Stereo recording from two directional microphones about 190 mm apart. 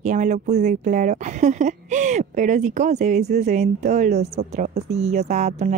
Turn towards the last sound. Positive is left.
turn(degrees=-35)  # may be behind; listen again after turning